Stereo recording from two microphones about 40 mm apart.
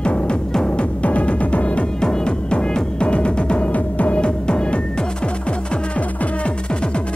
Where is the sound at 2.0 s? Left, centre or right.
Left.